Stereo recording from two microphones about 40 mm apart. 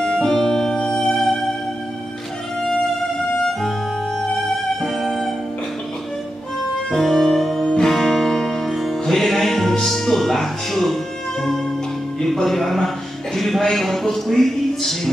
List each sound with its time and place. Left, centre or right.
0.0 s music: centre
4.8 s music: centre
6.9 s music: centre
7.6 s music: centre
7.9 s music: centre
12.4 s a man's voice: centre